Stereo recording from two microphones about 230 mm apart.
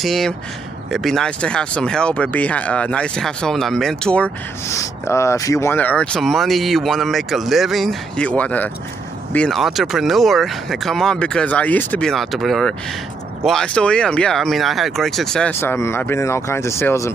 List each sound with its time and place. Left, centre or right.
0.0 s speech: centre